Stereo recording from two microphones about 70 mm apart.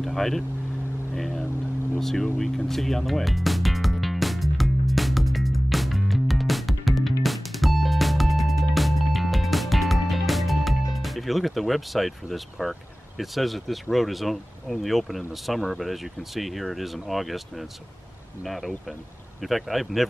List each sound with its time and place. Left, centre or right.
0.0 s speech: centre
2.0 s music: centre
11.0 s speech: centre